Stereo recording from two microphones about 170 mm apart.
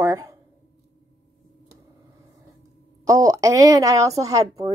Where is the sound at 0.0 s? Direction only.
15° right (ahead or behind).